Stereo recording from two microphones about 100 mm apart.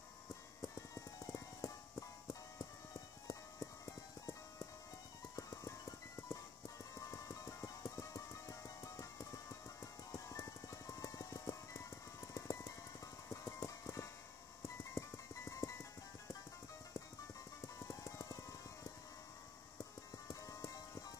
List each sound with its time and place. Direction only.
0.7 s music: 35° left (ahead or behind)
3.3 s clip-clop: 30° left (ahead or behind)
5.3 s music: 35° left (ahead or behind)
17.7 s music: 30° left (ahead or behind)
19.8 s music: 35° left (ahead or behind)